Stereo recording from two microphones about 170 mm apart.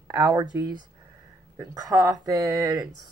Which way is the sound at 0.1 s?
15° right (ahead or behind).